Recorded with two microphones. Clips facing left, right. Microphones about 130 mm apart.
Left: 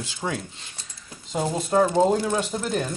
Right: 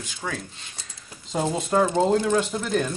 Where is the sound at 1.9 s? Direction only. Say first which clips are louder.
Even; 15° left (ahead or behind).